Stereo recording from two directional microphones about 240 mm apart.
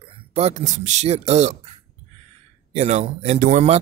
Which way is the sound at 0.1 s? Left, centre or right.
Right.